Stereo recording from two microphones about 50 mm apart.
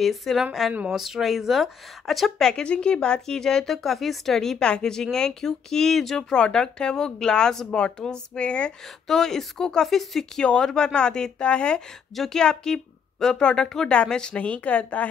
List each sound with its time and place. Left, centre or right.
0.0 s speech: centre
2.6 s a woman's voice: left
6.3 s a woman's voice: centre
9.0 s a woman's voice: centre
10.4 s a woman's voice: centre